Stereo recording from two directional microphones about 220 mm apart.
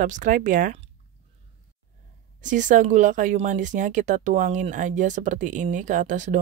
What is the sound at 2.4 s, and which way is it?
Speech, 35° right (ahead or behind).